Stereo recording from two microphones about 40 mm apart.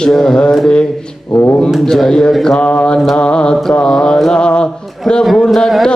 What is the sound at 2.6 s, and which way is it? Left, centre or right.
Mantra, left.